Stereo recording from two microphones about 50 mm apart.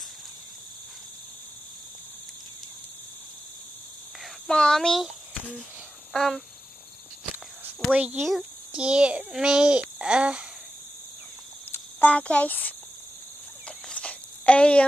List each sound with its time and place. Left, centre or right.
4.5 s speech: centre
6.1 s cricket: centre
7.9 s a child's voice: right
8.2 s speech: centre
8.7 s a child's voice: centre
12.0 s speech: left
13.7 s cricket: left